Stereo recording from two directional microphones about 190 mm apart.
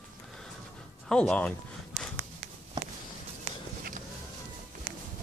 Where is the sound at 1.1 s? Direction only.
5° left (ahead or behind).